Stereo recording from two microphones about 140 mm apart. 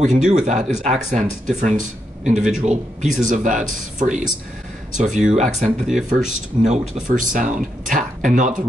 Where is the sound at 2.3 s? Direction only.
5° right (ahead or behind).